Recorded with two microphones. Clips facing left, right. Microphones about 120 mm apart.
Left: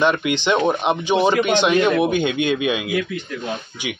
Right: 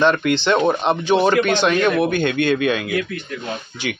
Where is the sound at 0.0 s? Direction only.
10° left (ahead or behind).